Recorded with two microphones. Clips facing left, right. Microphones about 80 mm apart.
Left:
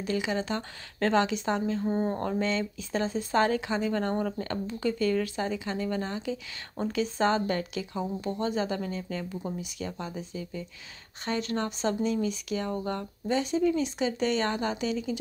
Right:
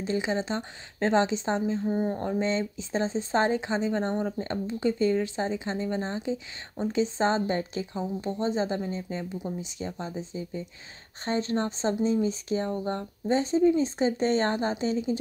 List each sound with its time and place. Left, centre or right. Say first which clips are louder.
0.0 s speech: right 1 dB; right
1.9 s speech: even; centre
2.1 s speech: right 1 dB; centre